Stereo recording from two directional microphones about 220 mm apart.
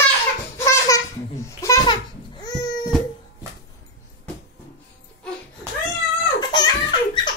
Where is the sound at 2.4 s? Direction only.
15° left (ahead or behind).